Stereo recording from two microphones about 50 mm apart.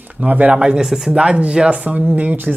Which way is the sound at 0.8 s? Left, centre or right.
Centre.